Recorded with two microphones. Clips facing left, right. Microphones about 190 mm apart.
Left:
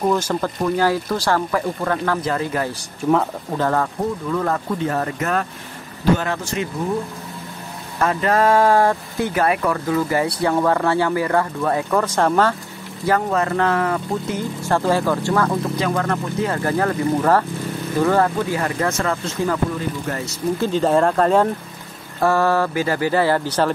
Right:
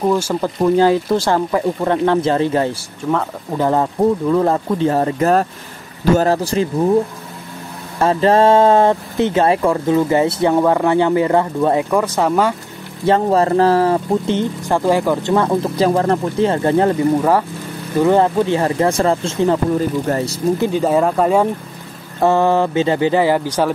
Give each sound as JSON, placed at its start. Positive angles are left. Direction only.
{"t": 0.0, "sound": "speech", "side_deg": -10}
{"t": 0.7, "sound": "speech", "side_deg": -20}
{"t": 2.7, "sound": "speech", "side_deg": 5}
{"t": 3.5, "sound": "speech", "side_deg": -20}
{"t": 4.3, "sound": "speech", "side_deg": -30}
{"t": 8.0, "sound": "speech", "side_deg": -30}
{"t": 12.0, "sound": "speech", "side_deg": -10}
{"t": 13.0, "sound": "speech", "side_deg": -30}
{"t": 14.6, "sound": "speech", "side_deg": -15}
{"t": 17.2, "sound": "speech", "side_deg": -10}
{"t": 20.5, "sound": "speech", "side_deg": -15}
{"t": 22.2, "sound": "speech", "side_deg": -20}